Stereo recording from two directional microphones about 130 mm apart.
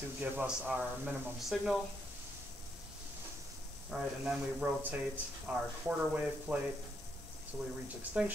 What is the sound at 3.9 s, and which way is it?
Speech, 10° right (ahead or behind).